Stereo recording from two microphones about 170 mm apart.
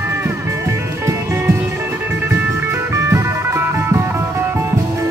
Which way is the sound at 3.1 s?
15° right (ahead or behind).